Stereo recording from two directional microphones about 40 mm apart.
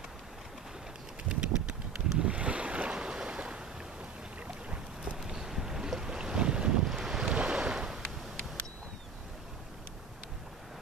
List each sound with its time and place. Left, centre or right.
1.3 s a sound: right
2.1 s boat: right
5.1 s boat: centre
6.9 s boat: centre
7.2 s boat: right